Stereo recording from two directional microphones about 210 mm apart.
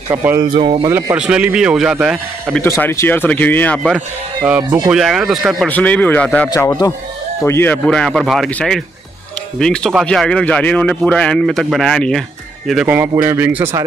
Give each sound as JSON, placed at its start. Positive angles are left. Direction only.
{"t": 0.1, "sound": "speech", "side_deg": -10}
{"t": 0.6, "sound": "speech", "side_deg": -25}
{"t": 0.9, "sound": "a man's voice", "side_deg": -10}
{"t": 2.6, "sound": "speech", "side_deg": 10}
{"t": 4.4, "sound": "a man's voice", "side_deg": -10}